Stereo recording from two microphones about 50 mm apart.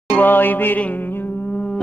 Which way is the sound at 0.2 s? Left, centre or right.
Left.